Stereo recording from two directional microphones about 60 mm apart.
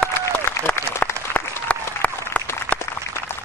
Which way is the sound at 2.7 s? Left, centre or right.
Right.